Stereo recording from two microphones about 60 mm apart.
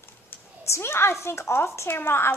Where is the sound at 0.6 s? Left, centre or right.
Left.